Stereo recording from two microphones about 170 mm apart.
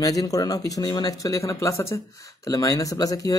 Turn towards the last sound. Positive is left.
turn(degrees=20)  # may be behind; listen again after turning